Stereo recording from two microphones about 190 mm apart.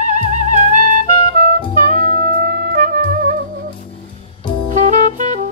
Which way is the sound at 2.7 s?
50° right (ahead or behind).